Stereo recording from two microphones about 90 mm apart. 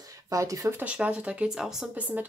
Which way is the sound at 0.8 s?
15° right (ahead or behind).